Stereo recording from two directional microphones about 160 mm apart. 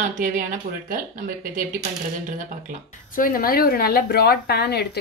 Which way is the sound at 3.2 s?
65° left (ahead or behind).